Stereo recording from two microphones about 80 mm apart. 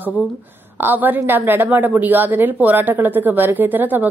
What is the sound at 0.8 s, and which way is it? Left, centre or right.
A woman's voice, right.